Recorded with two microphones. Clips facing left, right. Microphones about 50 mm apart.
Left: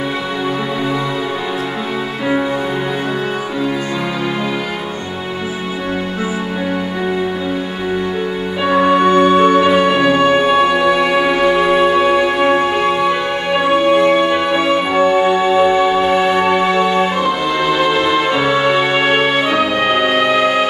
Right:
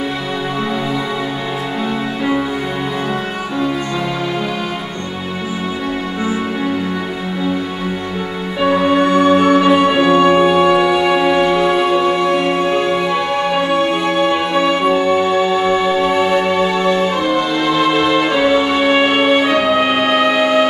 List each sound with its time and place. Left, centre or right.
8.7 s music: centre
15.8 s music: centre
18.5 s music: centre